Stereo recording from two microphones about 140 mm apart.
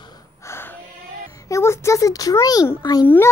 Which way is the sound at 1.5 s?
20° left (ahead or behind).